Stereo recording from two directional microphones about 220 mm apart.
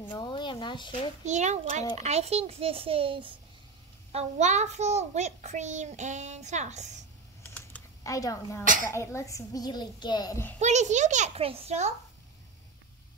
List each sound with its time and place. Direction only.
0.0 s speech: 20° left (ahead or behind)
1.2 s a child's voice: 30° right (ahead or behind)
7.5 s a sound: 10° left (ahead or behind)
8.9 s a child's voice: 15° left (ahead or behind)
10.6 s a child's voice: 30° right (ahead or behind)